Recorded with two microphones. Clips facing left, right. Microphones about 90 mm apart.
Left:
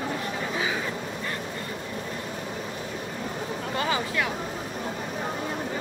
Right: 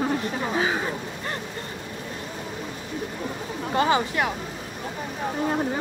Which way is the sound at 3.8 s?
30° right (ahead or behind).